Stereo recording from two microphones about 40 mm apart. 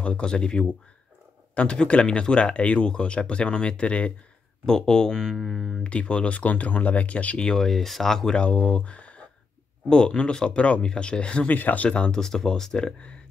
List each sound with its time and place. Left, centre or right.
0.0 s speech: left
4.6 s speech: centre
5.3 s speech: centre
5.9 s speech: left
7.5 s speech: centre
8.4 s speech: left
9.8 s speech: centre
11.4 s speech: left
12.1 s speech: centre